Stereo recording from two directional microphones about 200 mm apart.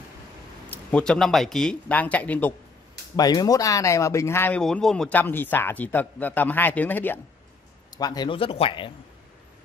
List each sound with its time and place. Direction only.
0.7 s speech: 5° left (ahead or behind)
3.2 s speech: 20° left (ahead or behind)
8.0 s speech: 20° left (ahead or behind)